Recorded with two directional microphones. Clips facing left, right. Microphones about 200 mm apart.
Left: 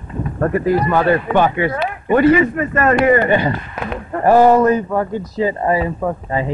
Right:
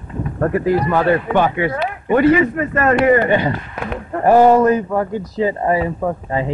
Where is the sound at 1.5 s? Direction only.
15° right (ahead or behind).